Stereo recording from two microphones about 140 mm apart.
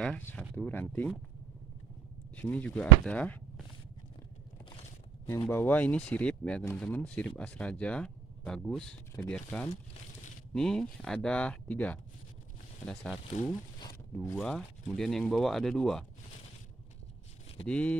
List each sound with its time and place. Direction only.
0.0 s speech: 5° left (ahead or behind)
2.3 s speech: 10° left (ahead or behind)
5.2 s speech: 15° left (ahead or behind)
13.3 s speech: 60° left (ahead or behind)
14.3 s speech: 5° left (ahead or behind)
17.6 s speech: 10° left (ahead or behind)